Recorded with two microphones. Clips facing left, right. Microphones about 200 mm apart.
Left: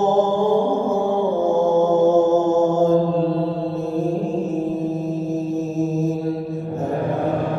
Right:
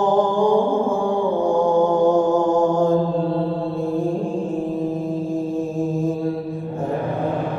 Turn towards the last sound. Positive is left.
turn(degrees=25)  # may be behind; listen again after turning